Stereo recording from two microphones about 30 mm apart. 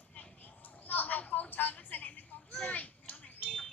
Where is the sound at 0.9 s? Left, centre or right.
Left.